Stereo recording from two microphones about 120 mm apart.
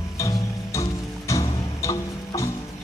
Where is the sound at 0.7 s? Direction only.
25° left (ahead or behind).